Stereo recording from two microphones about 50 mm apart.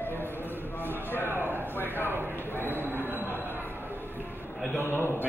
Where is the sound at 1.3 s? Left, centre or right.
Right.